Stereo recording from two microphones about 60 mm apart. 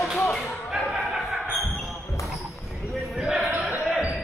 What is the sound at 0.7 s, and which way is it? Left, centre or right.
Basketball bounce, centre.